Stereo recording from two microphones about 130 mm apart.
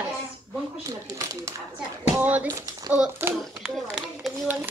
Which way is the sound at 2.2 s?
10° right (ahead or behind).